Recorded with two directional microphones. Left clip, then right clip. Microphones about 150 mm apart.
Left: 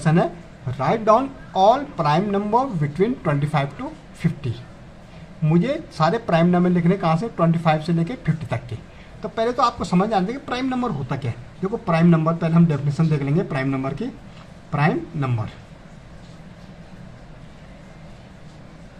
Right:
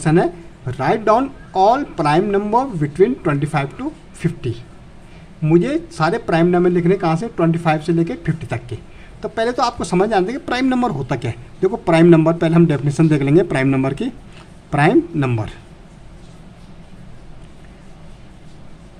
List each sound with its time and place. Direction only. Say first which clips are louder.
0.0 s speech: right 5 dB; 25° right (ahead or behind)
9.2 s speech: right 2 dB; 35° right (ahead or behind)